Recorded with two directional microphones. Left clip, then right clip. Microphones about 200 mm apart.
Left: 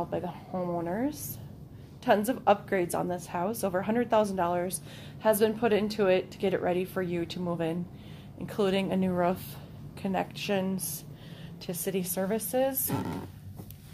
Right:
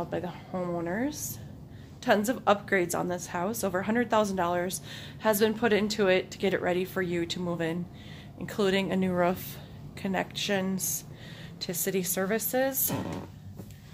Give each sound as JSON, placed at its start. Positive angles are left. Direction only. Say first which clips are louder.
{"t": 0.0, "sound": "a woman's voice", "louder": "even", "side_deg": -10}